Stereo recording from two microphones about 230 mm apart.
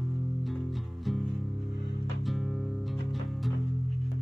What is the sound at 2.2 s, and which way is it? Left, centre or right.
Music, centre.